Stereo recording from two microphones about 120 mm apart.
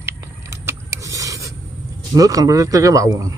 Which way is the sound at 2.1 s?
30° right (ahead or behind).